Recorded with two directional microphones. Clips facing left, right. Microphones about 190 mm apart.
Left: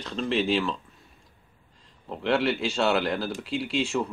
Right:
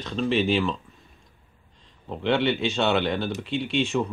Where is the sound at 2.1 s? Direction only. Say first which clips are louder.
Right 2 dB; centre (ahead or behind).